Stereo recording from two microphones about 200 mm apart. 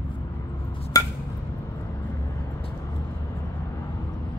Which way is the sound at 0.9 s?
20° left (ahead or behind).